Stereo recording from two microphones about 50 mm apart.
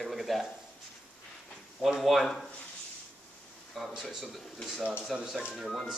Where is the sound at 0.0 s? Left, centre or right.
Centre.